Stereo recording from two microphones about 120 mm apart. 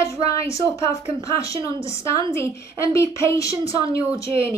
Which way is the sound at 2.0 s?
25° left (ahead or behind).